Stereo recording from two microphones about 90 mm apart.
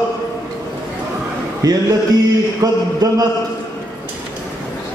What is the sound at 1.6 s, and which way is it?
Speech, 45° right (ahead or behind).